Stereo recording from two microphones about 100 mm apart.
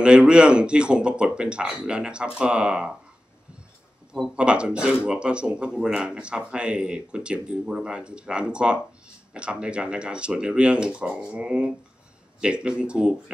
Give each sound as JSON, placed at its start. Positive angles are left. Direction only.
{"t": 0.0, "sound": "speech", "side_deg": -10}
{"t": 4.1, "sound": "speech", "side_deg": -10}